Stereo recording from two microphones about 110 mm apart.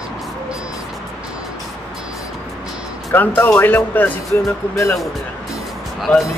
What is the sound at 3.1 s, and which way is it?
Speech, 20° left (ahead or behind).